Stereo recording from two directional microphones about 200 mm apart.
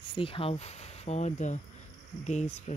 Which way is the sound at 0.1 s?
25° left (ahead or behind).